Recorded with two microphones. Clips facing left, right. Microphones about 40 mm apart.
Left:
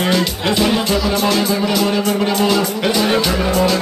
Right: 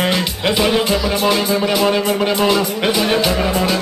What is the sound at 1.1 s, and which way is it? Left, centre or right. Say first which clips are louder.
Speech: even; centre.